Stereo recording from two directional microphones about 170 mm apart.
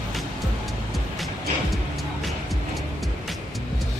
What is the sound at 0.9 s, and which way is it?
Music, centre (ahead or behind).